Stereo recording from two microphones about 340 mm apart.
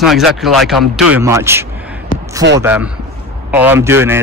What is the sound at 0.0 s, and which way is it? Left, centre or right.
A man's voice, centre.